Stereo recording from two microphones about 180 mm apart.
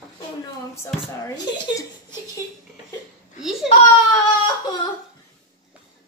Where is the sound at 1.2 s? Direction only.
20° left (ahead or behind).